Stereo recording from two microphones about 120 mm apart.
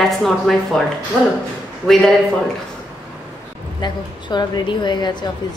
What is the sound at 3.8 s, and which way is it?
A woman's voice, 40° left (ahead or behind).